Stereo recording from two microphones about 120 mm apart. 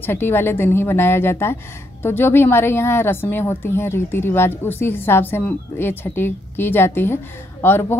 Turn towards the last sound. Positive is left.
turn(degrees=20)  # may be behind; listen again after turning